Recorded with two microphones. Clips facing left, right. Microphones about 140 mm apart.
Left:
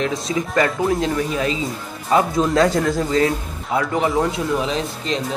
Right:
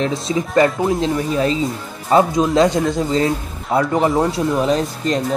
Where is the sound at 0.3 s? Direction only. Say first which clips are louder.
Right 5 dB; 30° right (ahead or behind).